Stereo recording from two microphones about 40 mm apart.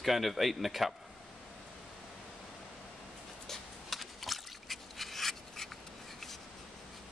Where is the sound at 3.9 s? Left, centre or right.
Centre.